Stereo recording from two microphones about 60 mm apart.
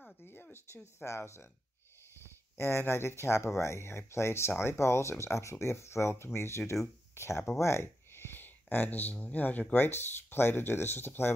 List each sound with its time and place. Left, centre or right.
0.2 s a sound: left
0.9 s speech: left
2.5 s speech: left
7.6 s a sound: left
9.1 s speech: left
9.8 s speech: left